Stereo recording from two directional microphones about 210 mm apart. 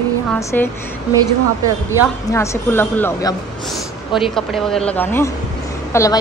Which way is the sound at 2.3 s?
15° left (ahead or behind).